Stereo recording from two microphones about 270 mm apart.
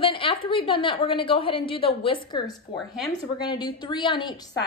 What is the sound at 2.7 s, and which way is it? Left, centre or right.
Speech, centre.